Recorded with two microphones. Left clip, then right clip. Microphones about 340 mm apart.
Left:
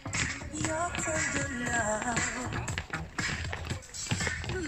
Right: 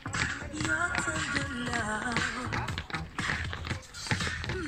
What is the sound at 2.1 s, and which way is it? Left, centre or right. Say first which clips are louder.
Beatboxing: right 1 dB; left.